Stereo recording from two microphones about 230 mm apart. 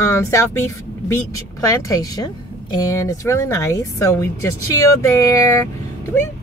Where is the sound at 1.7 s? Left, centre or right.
Centre.